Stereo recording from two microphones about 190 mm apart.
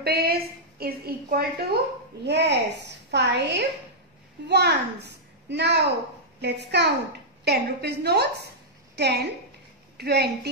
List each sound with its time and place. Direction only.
0.0 s a woman's voice: 55° right (ahead or behind)
2.2 s a woman's voice: 65° right (ahead or behind)